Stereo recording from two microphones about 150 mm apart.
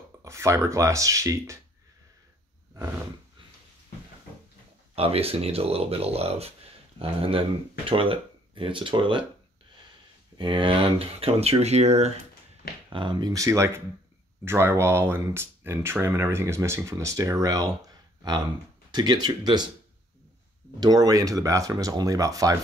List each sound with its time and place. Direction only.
0.2 s speech: 20° right (ahead or behind)
4.9 s speech: 40° right (ahead or behind)
10.3 s speech: 30° right (ahead or behind); by 12.1 s 45° right (ahead or behind)
12.9 s speech: 30° right (ahead or behind)
20.8 s speech: 25° right (ahead or behind)